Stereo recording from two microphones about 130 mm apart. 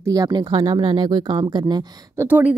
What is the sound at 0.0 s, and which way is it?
A woman's voice, 30° right (ahead or behind).